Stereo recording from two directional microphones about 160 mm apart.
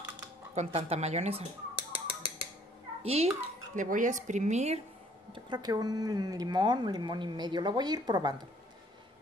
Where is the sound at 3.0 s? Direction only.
40° right (ahead or behind).